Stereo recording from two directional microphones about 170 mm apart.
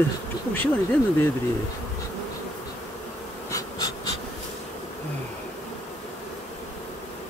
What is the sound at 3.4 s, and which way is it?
Bee, 20° left (ahead or behind).